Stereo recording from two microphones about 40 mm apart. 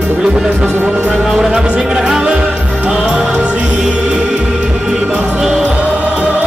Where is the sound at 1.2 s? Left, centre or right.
Centre.